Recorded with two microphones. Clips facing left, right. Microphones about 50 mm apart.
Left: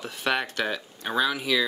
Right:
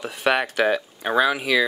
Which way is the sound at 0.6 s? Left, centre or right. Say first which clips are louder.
Right 8 dB; right.